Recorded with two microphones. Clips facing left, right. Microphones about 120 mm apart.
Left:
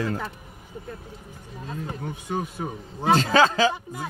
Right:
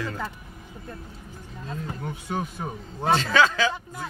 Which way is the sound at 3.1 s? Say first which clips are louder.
Left 2 dB; 40° left (ahead or behind).